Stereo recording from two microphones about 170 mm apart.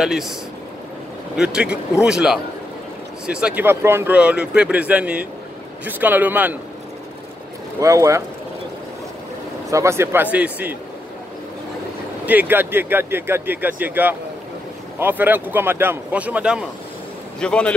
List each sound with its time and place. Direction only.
0.0 s speech: centre (ahead or behind)
1.3 s speech: 5° right (ahead or behind)
7.8 s speech: 20° right (ahead or behind)
9.7 s speech: 15° right (ahead or behind)
12.3 s speech: 10° right (ahead or behind)
17.4 s speech: 5° left (ahead or behind)